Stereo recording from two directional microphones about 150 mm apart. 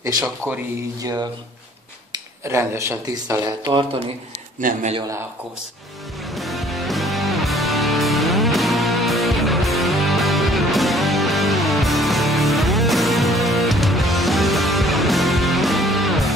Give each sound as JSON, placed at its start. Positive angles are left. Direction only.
{"t": 0.2, "sound": "speech", "side_deg": -15}
{"t": 2.1, "sound": "speech", "side_deg": -20}
{"t": 4.6, "sound": "a man's voice", "side_deg": -60}
{"t": 6.2, "sound": "music", "side_deg": 0}